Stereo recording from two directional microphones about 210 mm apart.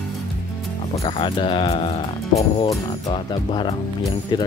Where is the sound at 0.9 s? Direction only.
25° left (ahead or behind).